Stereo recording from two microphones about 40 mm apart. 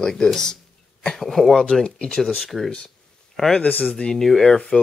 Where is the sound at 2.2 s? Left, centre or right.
Centre.